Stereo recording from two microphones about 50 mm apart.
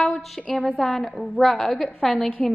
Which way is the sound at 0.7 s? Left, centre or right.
Centre.